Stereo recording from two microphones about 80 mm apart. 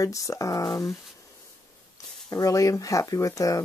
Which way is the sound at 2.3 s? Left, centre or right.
Left.